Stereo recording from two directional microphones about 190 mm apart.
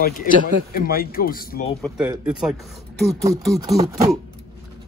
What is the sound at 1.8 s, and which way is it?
Speech, centre (ahead or behind).